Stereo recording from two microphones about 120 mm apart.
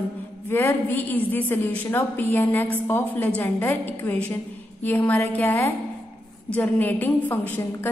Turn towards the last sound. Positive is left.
turn(degrees=15)  # may be behind; listen again after turning